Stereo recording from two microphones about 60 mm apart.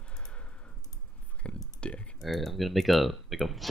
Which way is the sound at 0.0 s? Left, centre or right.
Centre.